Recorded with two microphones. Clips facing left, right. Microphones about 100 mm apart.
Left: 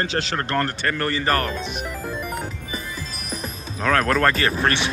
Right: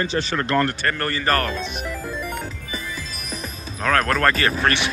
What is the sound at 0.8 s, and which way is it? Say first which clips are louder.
Speech: even; 15° left (ahead or behind).